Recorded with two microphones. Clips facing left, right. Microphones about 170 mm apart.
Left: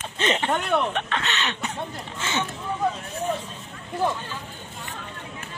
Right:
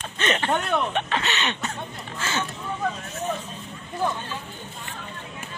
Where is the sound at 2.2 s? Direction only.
20° left (ahead or behind).